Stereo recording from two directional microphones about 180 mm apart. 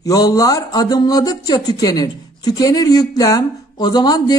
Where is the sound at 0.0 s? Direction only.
20° left (ahead or behind).